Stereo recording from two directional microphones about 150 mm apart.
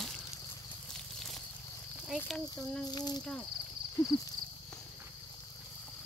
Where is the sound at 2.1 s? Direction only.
10° left (ahead or behind).